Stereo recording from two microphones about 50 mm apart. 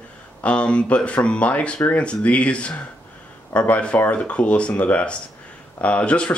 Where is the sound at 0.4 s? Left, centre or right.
Left.